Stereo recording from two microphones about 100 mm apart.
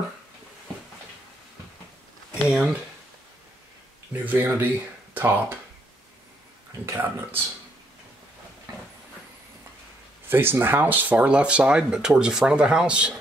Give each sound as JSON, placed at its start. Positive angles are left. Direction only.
{"t": 2.4, "sound": "speech", "side_deg": -5}
{"t": 4.1, "sound": "speech", "side_deg": -15}
{"t": 6.9, "sound": "speech", "side_deg": -20}
{"t": 10.2, "sound": "speech", "side_deg": -20}